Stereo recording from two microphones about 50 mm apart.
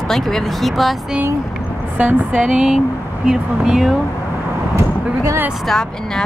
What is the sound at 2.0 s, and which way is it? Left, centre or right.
Speech, right.